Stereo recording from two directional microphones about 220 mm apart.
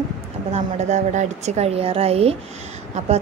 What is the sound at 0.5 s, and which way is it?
A woman's voice, 30° right (ahead or behind).